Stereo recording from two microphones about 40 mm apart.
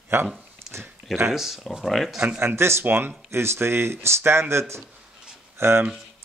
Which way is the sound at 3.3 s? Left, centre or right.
Right.